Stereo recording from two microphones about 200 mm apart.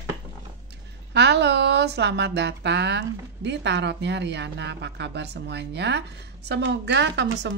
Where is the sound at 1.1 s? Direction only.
60° right (ahead or behind).